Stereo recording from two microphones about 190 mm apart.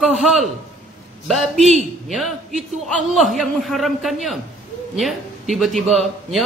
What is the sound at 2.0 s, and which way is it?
A man's voice, centre (ahead or behind).